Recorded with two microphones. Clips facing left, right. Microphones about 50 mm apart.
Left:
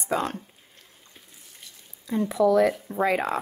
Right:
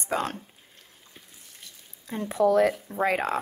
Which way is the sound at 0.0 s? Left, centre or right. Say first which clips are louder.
Left 2 dB; right.